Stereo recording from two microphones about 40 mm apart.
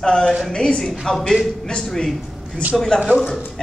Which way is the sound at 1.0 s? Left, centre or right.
Centre.